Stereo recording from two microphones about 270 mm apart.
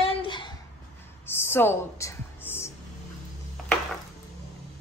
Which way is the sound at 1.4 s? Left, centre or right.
Centre.